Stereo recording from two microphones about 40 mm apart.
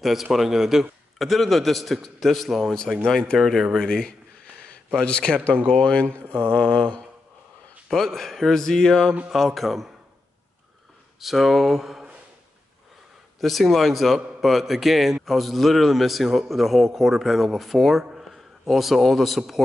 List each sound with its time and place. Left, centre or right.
0.0 s a man's voice: centre
3.8 s speech: centre
5.0 s mantra: left
6.2 s mantra: right
6.5 s mantra: left
7.9 s speech: centre
9.3 s a man's voice: centre
11.1 s a man's voice: centre
13.4 s a man's voice: centre